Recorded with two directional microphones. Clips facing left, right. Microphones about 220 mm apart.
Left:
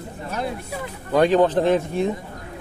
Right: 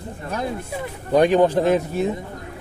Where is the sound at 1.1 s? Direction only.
15° right (ahead or behind).